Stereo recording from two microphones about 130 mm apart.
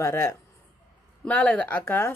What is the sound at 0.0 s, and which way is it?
Speech, 20° left (ahead or behind).